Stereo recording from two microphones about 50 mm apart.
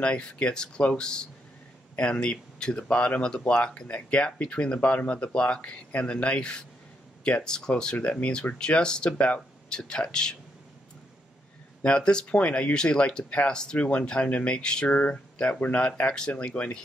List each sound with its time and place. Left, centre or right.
0.0 s speech: left
11.8 s speech: centre